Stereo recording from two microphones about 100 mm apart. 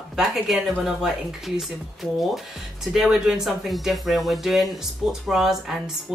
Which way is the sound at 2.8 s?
5° right (ahead or behind).